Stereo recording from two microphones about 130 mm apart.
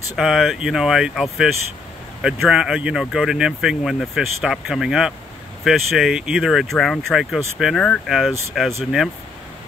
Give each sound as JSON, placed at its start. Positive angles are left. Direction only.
{"t": 0.1, "sound": "speech", "side_deg": 0}